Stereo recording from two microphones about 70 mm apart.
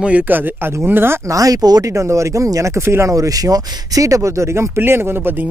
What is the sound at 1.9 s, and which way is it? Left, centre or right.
Speech, right.